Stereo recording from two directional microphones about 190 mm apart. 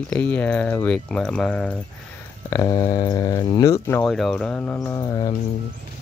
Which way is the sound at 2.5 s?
20° left (ahead or behind).